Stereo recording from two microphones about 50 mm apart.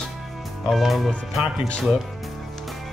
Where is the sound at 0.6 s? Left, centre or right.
Centre.